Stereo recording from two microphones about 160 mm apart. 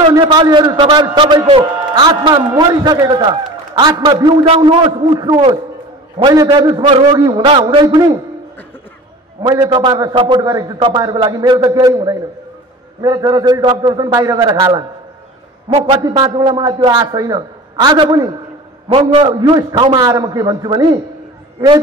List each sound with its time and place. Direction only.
0.2 s a man's voice: 30° right (ahead or behind)
9.4 s a man's voice: 30° right (ahead or behind)
15.9 s a man's voice: 25° right (ahead or behind)